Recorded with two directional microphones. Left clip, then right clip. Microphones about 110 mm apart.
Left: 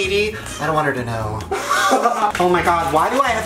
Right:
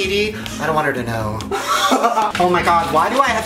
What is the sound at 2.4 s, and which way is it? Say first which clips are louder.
Speech: right 1 dB; 5° left (ahead or behind).